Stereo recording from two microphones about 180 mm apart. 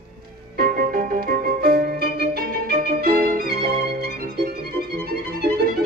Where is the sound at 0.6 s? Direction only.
55° right (ahead or behind).